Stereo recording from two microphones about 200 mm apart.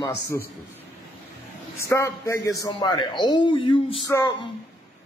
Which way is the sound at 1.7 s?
15° left (ahead or behind).